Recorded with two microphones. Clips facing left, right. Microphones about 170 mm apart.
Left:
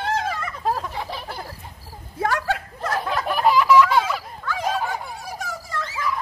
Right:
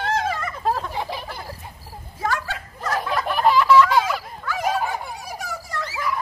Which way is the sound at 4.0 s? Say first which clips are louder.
Right 1 dB; 5° right (ahead or behind).